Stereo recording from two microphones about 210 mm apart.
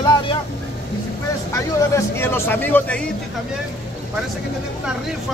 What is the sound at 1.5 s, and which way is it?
Speech, 10° left (ahead or behind).